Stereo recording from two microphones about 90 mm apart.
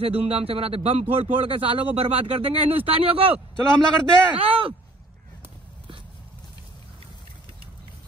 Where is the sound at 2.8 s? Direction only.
90° right.